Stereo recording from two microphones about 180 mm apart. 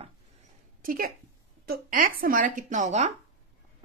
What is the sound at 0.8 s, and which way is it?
Speech, 50° right (ahead or behind).